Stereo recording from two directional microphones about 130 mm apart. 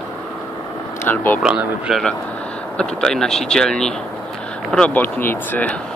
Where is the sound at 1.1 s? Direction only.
15° left (ahead or behind).